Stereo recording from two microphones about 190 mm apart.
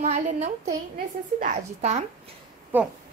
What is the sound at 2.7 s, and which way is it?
Speech, 10° right (ahead or behind).